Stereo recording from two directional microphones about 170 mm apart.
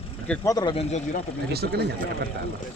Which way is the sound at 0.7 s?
40° left (ahead or behind).